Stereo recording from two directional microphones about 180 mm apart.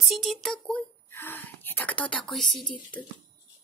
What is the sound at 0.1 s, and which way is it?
A woman's voice, centre (ahead or behind).